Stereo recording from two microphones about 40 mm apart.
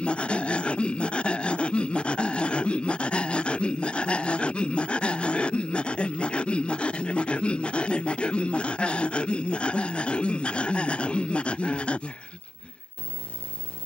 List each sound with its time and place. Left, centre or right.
0.0 s dog: left